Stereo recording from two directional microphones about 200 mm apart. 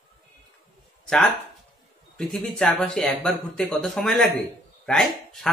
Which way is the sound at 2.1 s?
Centre (ahead or behind).